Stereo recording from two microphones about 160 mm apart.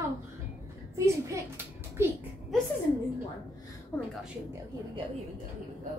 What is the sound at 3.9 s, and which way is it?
Speech, 15° left (ahead or behind).